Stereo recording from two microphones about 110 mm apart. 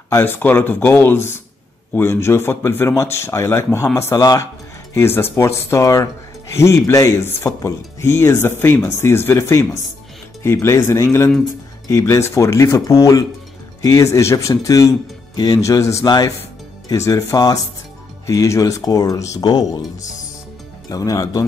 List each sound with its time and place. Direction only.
0.1 s speech: 20° left (ahead or behind); by 19.8 s 35° left (ahead or behind)
20.9 s speech: 30° left (ahead or behind)